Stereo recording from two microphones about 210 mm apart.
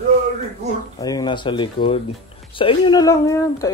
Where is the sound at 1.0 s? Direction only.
20° left (ahead or behind).